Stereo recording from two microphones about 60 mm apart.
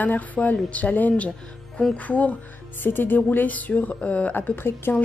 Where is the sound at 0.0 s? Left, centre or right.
Left.